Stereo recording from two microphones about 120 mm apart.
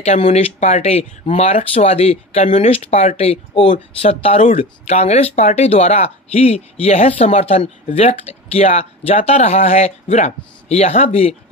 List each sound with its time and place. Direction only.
0.0 s speech: 60° left (ahead or behind)
2.7 s speech: 55° left (ahead or behind)